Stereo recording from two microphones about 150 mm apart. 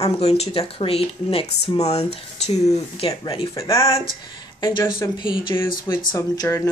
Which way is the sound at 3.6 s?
20° left (ahead or behind).